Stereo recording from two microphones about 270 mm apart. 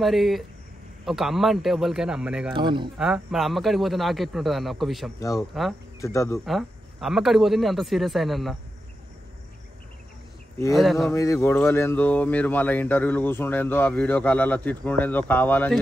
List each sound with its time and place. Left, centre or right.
0.0 s speech: centre
2.5 s speech: centre
3.0 s speech: centre
5.9 s speech: centre
6.4 s speech: centre
10.7 s speech: centre
11.1 s speech: centre